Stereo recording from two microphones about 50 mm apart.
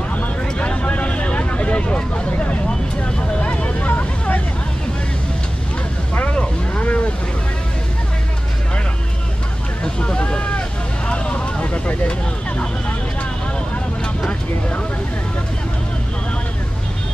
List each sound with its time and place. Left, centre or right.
0.6 s vehicle: left
6.1 s vehicle: left
9.9 s vehicle: left